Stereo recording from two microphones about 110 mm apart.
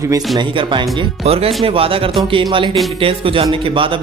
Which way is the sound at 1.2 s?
60° right (ahead or behind).